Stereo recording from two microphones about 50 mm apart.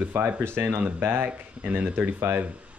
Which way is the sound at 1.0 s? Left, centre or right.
Right.